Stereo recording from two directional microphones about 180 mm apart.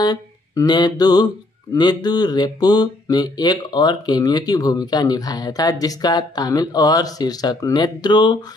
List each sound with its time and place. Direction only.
0.0 s mantra: 20° left (ahead or behind)